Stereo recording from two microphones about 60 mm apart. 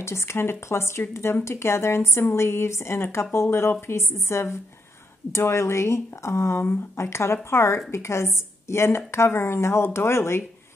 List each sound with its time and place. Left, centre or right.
0.0 s a woman's voice: left